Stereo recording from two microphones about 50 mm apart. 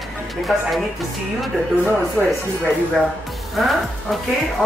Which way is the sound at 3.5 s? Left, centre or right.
Centre.